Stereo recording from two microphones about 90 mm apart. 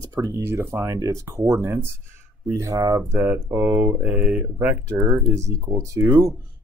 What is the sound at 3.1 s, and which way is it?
Speech, 20° right (ahead or behind).